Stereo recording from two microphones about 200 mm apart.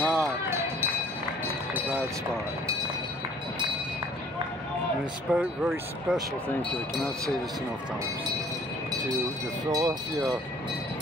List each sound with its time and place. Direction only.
0.0 s run: centre (ahead or behind)
5.3 s speech: 5° right (ahead or behind)
9.7 s speech: 15° right (ahead or behind)